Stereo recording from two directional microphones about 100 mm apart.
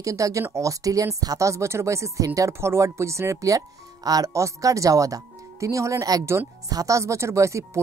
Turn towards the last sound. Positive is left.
turn(degrees=-30)  # may be behind; listen again after turning